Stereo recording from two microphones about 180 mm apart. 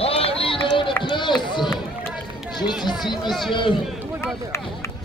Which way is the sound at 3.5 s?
25° left (ahead or behind).